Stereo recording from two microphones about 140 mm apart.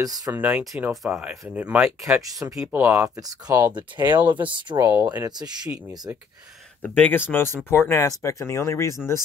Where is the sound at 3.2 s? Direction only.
25° right (ahead or behind).